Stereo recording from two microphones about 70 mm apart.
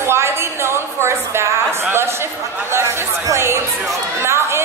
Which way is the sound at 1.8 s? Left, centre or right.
Right.